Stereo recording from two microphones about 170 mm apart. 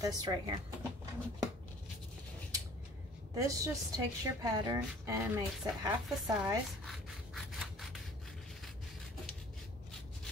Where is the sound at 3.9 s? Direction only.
20° right (ahead or behind).